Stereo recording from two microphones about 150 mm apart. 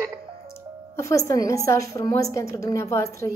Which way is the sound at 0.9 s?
20° left (ahead or behind).